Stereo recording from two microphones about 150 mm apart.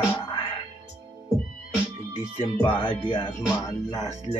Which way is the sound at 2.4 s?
35° left (ahead or behind).